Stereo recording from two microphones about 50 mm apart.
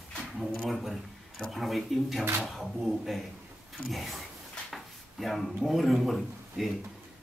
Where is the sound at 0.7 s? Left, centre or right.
Centre.